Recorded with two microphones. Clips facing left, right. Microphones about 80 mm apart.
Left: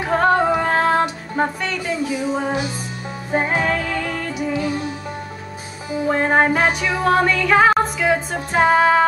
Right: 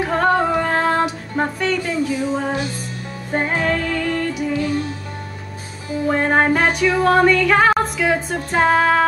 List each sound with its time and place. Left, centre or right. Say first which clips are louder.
0.0 s female singing: left 1 dB; centre
3.3 s music: even; centre
5.9 s music: even; centre